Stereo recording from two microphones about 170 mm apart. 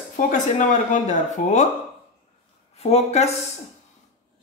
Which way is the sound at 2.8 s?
40° left (ahead or behind).